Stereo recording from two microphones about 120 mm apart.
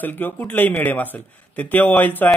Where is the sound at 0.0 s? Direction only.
15° left (ahead or behind).